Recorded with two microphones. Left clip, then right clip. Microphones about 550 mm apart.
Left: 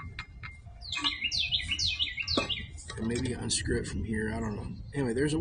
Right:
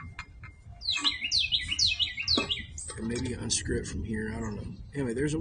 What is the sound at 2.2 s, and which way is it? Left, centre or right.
Speech, left.